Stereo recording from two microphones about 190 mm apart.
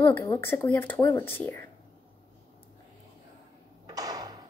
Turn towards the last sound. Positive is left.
turn(degrees=-20)  # may be behind; listen again after turning